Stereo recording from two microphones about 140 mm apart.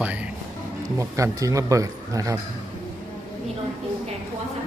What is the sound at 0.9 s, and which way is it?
Speech, 20° right (ahead or behind).